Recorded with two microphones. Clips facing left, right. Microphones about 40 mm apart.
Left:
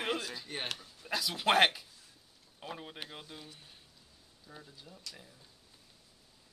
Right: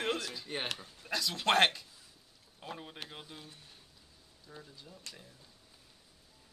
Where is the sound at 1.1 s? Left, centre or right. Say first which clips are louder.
Left 1 dB; centre.